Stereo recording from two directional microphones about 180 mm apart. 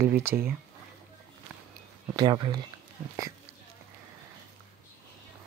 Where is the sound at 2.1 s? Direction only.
25° right (ahead or behind).